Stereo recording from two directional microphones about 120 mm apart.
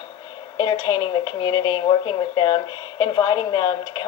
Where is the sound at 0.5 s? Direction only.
40° left (ahead or behind).